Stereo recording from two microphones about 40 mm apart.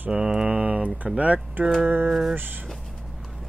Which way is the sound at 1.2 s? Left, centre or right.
Right.